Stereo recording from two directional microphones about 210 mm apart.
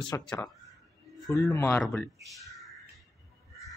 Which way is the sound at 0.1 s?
10° left (ahead or behind).